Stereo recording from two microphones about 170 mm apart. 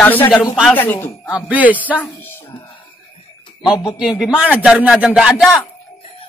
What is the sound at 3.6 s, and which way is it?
A man's voice, 5° right (ahead or behind).